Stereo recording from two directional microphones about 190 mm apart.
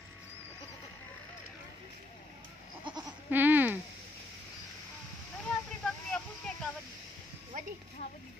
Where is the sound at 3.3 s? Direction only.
10° right (ahead or behind).